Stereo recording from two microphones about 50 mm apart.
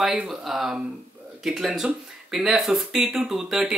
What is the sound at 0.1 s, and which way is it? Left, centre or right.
Speech, centre.